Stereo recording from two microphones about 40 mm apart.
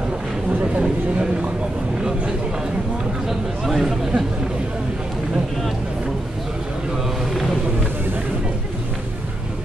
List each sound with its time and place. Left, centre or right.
0.7 s speech: right
3.3 s speech: centre